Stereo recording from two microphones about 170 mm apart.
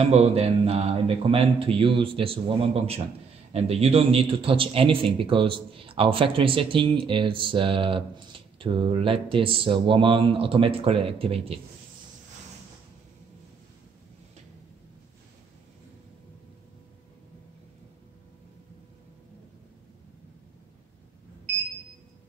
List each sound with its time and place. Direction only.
0.0 s a man's voice: 35° right (ahead or behind)